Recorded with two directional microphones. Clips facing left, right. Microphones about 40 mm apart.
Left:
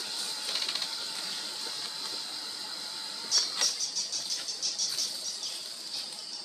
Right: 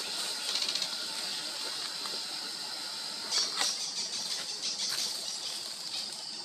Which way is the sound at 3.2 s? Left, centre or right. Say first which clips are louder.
Left 1 dB; right.